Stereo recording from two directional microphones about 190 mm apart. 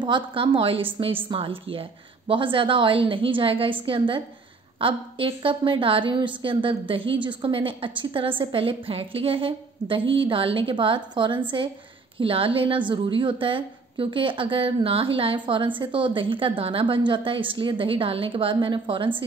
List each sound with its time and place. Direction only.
0.0 s a woman's voice: 25° right (ahead or behind)